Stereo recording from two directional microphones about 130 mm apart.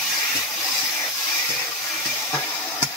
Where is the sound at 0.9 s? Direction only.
10° left (ahead or behind).